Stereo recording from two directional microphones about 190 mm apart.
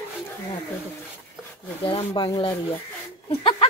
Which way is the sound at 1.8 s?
30° left (ahead or behind).